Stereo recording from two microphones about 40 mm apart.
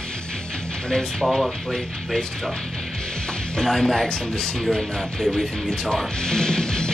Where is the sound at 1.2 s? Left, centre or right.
Centre.